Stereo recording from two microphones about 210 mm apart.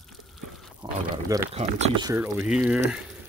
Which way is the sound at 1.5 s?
30° right (ahead or behind).